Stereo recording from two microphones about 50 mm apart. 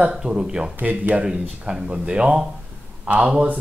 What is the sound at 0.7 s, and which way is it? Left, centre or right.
Speech, right.